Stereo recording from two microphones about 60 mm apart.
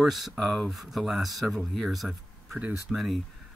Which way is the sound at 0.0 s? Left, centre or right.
Centre.